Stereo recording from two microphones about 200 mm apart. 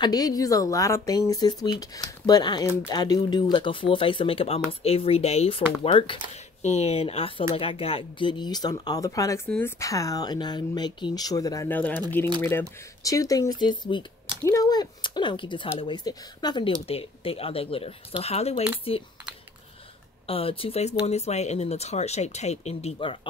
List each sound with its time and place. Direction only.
0.0 s speech: 20° left (ahead or behind)
14.2 s a sound: 20° right (ahead or behind)
14.5 s speech: 20° left (ahead or behind)
20.2 s speech: 30° left (ahead or behind)